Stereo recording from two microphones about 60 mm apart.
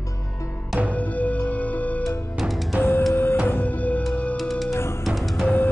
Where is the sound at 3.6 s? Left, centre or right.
Left.